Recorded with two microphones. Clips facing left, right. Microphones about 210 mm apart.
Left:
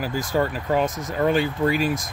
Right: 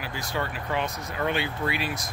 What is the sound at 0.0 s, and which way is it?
Speech, 45° left (ahead or behind).